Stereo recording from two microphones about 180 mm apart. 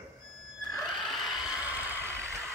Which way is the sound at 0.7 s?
Centre (ahead or behind).